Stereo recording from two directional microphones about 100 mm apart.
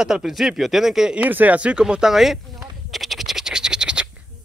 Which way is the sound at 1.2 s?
15° right (ahead or behind).